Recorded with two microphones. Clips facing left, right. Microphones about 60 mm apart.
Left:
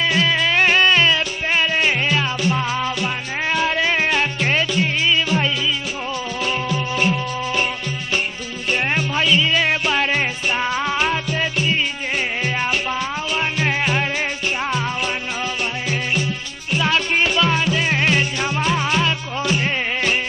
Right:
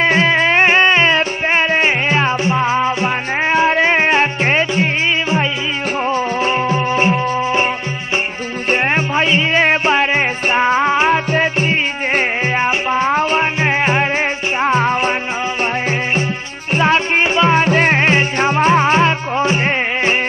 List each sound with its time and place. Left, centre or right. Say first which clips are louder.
0.0 s music: right 5 dB; right
6.0 s music: right 8 dB; right
8.6 s music: right 5 dB; right